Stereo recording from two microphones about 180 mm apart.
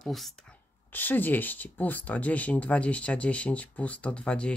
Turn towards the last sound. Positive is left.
turn(degrees=5)  # may be behind; listen again after turning